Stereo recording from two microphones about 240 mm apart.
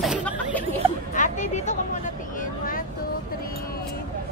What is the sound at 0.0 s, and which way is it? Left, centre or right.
Chatter, centre.